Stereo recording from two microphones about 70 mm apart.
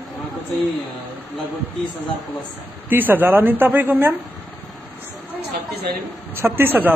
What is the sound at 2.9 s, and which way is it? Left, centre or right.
A woman's voice, right.